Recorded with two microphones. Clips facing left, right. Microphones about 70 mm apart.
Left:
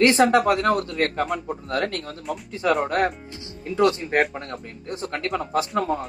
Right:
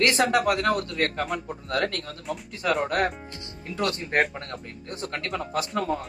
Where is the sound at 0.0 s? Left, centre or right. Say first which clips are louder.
Left 5 dB; left.